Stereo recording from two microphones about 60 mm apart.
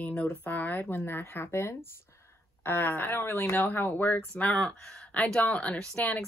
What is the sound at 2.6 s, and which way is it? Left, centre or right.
Speech, left.